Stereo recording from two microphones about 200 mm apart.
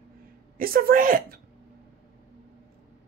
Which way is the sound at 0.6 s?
45° right (ahead or behind).